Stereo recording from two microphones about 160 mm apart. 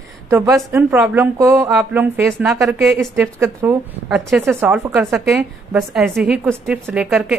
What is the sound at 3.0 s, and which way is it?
A woman's voice, 15° right (ahead or behind).